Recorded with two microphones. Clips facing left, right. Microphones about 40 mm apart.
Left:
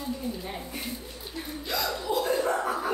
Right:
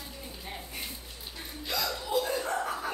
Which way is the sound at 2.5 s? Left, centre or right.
Centre.